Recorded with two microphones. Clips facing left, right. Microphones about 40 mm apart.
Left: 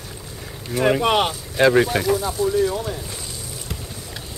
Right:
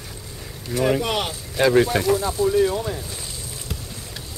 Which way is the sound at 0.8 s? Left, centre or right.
Centre.